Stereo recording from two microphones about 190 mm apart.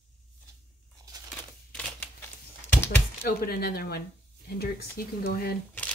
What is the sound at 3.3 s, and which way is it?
Speech, 55° left (ahead or behind).